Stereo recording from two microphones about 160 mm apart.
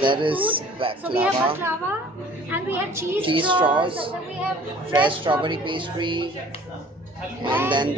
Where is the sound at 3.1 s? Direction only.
30° right (ahead or behind).